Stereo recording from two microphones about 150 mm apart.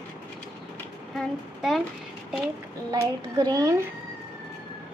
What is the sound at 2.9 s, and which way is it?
Speech, 25° right (ahead or behind).